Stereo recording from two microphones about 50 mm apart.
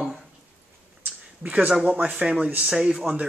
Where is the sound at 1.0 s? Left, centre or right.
Right.